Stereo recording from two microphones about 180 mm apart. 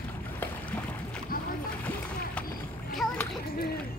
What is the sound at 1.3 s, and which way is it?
Music, 55° left (ahead or behind).